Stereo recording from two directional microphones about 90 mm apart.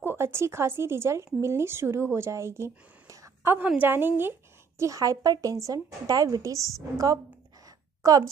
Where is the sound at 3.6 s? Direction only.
20° right (ahead or behind); by 6.5 s 40° right (ahead or behind).